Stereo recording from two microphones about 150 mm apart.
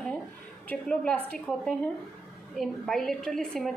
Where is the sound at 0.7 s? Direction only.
10° left (ahead or behind).